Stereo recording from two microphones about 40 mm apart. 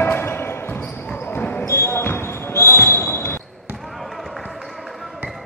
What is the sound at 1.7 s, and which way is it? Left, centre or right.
Basketball bounce, left.